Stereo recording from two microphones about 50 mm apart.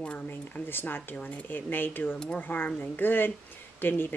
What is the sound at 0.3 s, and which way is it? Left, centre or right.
Speech, left.